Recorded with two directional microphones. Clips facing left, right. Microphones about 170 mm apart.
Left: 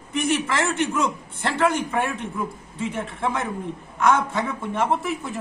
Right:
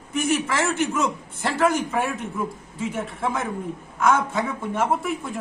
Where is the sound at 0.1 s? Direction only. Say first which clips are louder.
Even; 5° right (ahead or behind).